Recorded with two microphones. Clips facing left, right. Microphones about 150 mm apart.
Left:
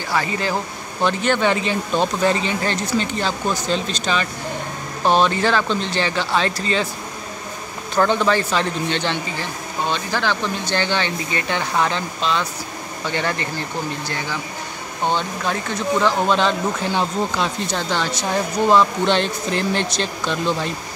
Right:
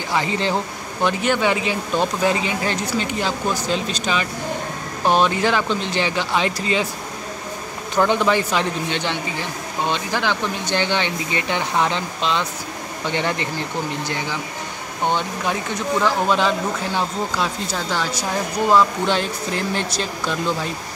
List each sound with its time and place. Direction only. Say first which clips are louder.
0.1 s speech: right 1 dB; 20° right (ahead or behind)
1.0 s speech: left 1 dB; 10° right (ahead or behind)
7.9 s speech: even; 15° right (ahead or behind)